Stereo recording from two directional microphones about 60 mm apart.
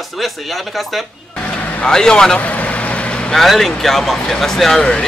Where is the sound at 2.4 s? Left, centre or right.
Left.